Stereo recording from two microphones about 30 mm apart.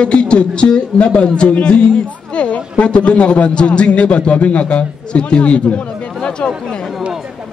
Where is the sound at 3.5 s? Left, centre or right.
Left.